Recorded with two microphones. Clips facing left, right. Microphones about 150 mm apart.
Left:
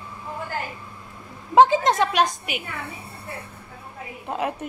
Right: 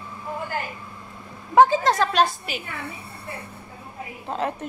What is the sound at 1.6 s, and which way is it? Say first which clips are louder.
A woman's voice: left 1 dB; 20° left (ahead or behind).